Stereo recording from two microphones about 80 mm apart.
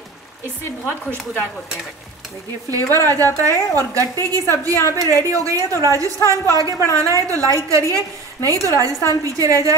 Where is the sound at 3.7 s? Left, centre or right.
Right.